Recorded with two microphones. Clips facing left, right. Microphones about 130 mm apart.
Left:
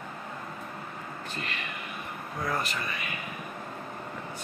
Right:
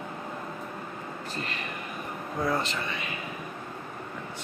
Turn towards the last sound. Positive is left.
turn(degrees=-25)  # may be behind; listen again after turning